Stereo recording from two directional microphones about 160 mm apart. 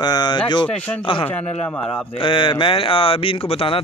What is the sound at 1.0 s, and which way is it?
Speech, 30° left (ahead or behind).